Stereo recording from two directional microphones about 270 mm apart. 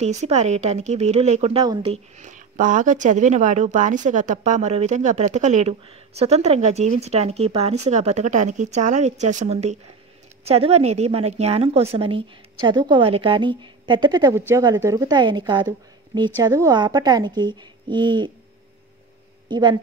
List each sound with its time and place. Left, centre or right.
0.0 s a woman's voice: right
19.4 s speech: centre